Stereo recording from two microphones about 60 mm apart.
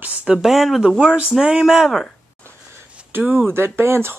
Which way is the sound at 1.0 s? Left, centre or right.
Centre.